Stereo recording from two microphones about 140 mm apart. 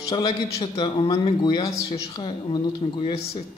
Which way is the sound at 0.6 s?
35° left (ahead or behind).